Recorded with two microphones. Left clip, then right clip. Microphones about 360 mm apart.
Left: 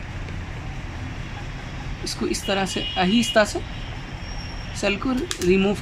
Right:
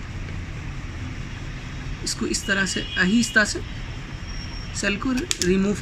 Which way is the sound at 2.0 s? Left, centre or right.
Centre.